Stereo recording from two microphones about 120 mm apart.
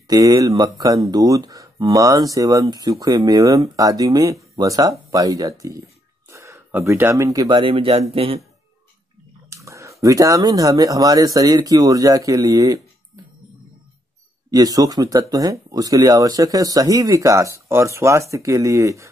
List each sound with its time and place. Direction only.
0.1 s speech: 30° right (ahead or behind)
6.3 s a sound: 25° right (ahead or behind)
6.7 s speech: 20° right (ahead or behind)
7.4 s speech: 45° right (ahead or behind)
9.5 s speech: 25° right (ahead or behind)
14.5 s speech: 30° right (ahead or behind)